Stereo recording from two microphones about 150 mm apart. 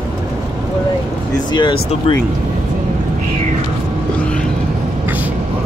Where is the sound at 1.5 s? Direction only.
30° left (ahead or behind).